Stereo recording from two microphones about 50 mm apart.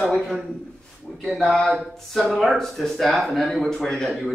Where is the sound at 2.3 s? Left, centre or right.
Centre.